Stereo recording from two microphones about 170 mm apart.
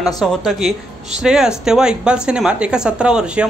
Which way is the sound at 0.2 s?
Centre (ahead or behind).